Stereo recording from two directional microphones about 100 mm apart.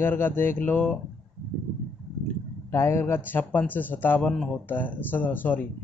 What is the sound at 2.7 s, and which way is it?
A man's voice, 25° left (ahead or behind).